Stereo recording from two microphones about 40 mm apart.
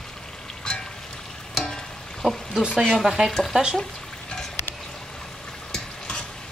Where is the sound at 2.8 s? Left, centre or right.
Centre.